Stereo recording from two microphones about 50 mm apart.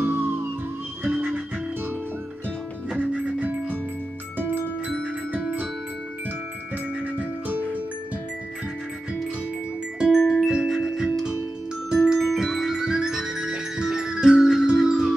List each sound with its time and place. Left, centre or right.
0.0 s music: right
3.0 s music: right
7.2 s music: right
9.9 s music: centre